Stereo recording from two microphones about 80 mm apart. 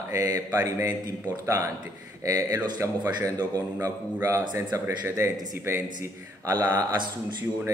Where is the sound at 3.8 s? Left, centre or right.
Right.